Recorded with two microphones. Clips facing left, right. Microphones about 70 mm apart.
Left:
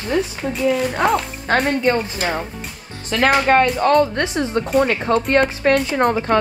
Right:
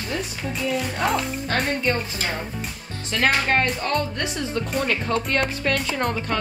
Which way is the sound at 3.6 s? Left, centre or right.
Left.